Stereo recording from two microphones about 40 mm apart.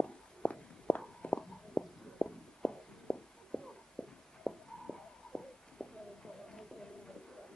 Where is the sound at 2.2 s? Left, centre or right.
Left.